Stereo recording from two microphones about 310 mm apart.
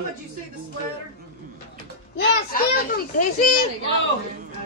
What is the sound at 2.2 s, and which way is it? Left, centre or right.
Speech, left.